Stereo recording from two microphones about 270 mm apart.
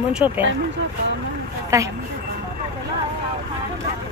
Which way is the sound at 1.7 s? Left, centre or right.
Centre.